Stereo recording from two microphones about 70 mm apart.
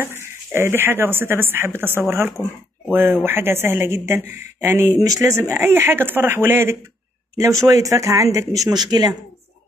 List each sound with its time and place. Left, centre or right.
0.0 s speech: right
7.4 s speech: right
8.8 s speech: right